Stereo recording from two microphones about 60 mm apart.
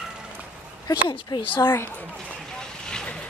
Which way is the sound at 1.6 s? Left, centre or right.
Left.